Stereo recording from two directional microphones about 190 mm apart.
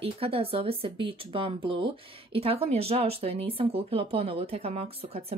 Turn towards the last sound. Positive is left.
turn(degrees=-30)  # may be behind; listen again after turning